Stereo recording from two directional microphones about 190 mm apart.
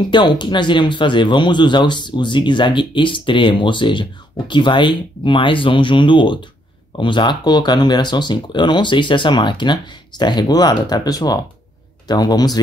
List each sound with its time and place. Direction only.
0.1 s speech: 25° left (ahead or behind)